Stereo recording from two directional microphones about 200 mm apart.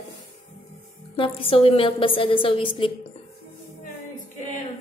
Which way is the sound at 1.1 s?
25° left (ahead or behind).